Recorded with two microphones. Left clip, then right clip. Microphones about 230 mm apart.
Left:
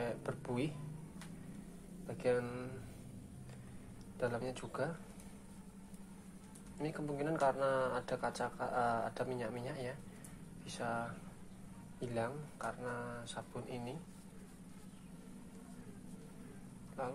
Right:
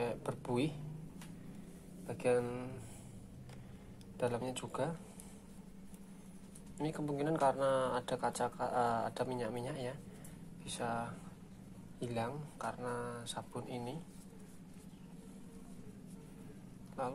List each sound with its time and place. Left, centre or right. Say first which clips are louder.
0.0 s a sound: right 2 dB; right
2.0 s speech: right 2 dB; right
4.2 s speech: right 2 dB; right
6.8 s speech: right 2 dB; right